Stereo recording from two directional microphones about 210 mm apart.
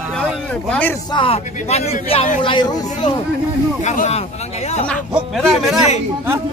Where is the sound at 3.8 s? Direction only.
35° left (ahead or behind).